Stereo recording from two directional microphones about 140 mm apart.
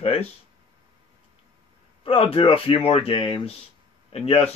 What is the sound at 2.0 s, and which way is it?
A man's voice, 40° left (ahead or behind).